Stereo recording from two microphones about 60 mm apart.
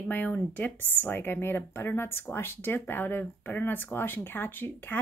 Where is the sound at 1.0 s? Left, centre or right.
Left.